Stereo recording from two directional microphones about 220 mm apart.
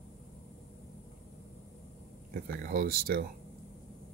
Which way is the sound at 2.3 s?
40° right (ahead or behind).